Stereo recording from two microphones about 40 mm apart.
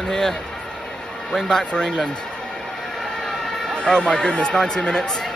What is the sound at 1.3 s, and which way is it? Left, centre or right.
Speech, centre.